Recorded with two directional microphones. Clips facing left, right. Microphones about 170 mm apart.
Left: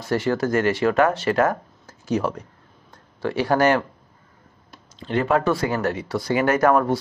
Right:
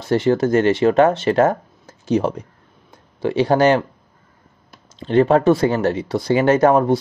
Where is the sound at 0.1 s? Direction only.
25° right (ahead or behind).